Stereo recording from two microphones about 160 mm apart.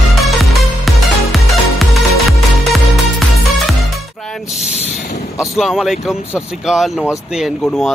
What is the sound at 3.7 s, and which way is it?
Music, centre (ahead or behind).